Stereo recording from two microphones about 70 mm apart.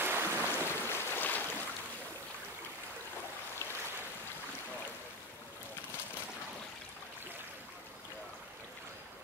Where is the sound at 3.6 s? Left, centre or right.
Left.